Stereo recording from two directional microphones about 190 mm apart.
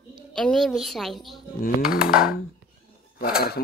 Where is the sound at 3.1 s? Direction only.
50° left (ahead or behind).